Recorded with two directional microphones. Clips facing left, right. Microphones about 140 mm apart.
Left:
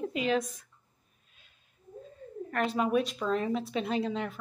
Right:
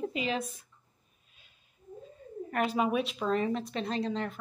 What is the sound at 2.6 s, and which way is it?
A woman's voice, 5° right (ahead or behind).